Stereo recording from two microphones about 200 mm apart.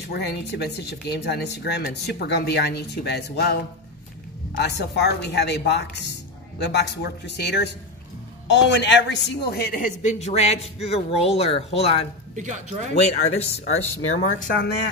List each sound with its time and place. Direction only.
0.1 s speech: 55° left (ahead or behind)
4.6 s a man's voice: 60° left (ahead or behind); by 14.5 s 35° left (ahead or behind)